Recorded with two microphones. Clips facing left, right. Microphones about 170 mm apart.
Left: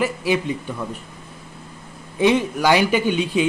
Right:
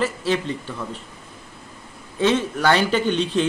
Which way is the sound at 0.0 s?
10° left (ahead or behind).